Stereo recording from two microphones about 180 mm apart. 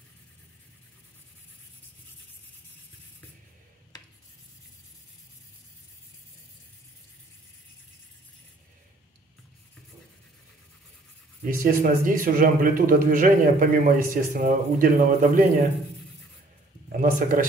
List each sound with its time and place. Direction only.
11.4 s speech: 50° right (ahead or behind)
17.0 s speech: 50° right (ahead or behind)